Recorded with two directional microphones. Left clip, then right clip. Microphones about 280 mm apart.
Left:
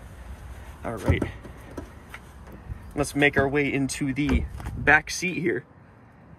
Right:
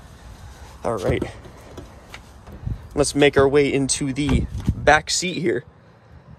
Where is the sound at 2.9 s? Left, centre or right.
Centre.